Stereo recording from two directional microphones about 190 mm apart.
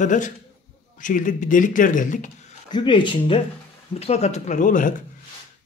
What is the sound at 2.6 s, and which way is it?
Speech, 25° left (ahead or behind).